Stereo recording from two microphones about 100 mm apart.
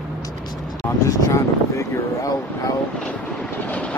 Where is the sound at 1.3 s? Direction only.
30° left (ahead or behind).